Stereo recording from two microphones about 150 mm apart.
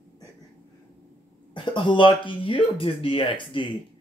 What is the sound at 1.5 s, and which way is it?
Speech, 30° left (ahead or behind).